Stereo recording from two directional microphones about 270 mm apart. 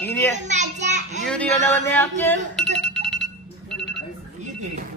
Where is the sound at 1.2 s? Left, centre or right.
Centre.